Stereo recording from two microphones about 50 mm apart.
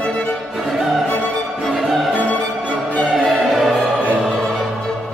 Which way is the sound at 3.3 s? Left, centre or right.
Centre.